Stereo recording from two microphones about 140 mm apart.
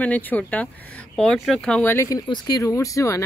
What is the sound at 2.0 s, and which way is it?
Speech, 30° left (ahead or behind).